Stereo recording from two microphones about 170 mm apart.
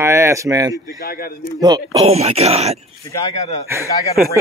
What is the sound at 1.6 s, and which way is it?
Speech, 25° right (ahead or behind).